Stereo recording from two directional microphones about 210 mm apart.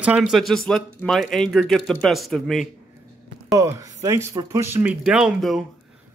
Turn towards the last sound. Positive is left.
turn(degrees=0)  # may be behind; listen again after turning